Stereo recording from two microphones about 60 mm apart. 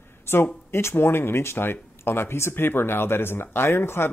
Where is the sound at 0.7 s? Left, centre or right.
Left.